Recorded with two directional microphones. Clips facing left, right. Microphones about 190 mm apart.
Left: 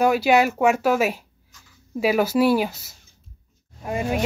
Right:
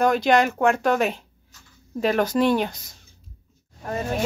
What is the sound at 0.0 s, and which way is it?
Speech, 5° left (ahead or behind).